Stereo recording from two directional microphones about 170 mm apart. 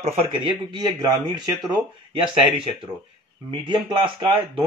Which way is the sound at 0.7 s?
25° right (ahead or behind).